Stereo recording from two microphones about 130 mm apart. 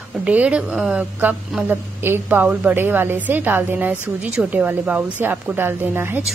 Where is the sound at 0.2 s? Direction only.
10° right (ahead or behind).